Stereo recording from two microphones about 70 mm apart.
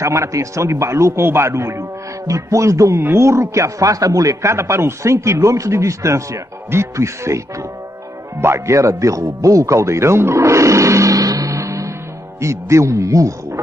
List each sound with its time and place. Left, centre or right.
0.0 s a man's voice: right